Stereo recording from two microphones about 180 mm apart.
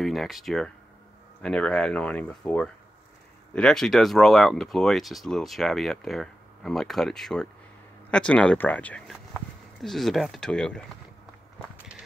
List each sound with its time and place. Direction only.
0.0 s speech: centre (ahead or behind)